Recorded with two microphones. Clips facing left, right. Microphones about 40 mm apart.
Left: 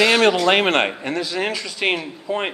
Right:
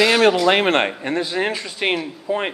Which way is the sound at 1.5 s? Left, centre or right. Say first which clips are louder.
Right 1 dB; centre.